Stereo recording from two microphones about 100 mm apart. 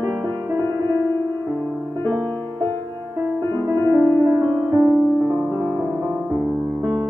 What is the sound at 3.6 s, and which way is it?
Music, 30° right (ahead or behind).